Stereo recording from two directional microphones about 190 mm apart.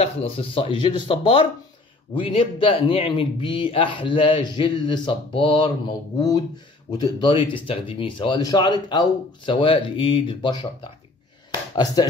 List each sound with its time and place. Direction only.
0.0 s speech: 30° left (ahead or behind)